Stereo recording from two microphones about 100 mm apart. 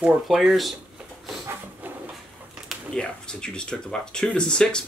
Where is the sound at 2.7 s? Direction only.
5° left (ahead or behind).